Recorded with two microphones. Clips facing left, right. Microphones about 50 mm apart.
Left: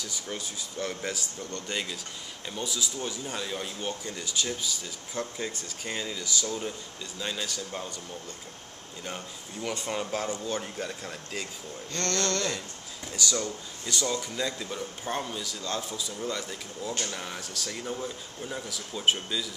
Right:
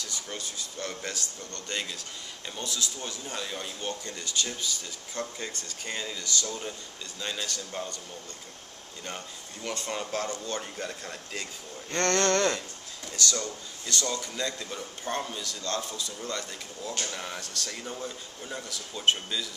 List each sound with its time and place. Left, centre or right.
0.0 s a man's voice: centre
9.0 s a man's voice: centre
11.9 s speech: right
13.1 s a man's voice: centre